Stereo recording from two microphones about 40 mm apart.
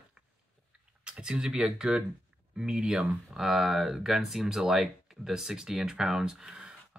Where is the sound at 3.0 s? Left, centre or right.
Centre.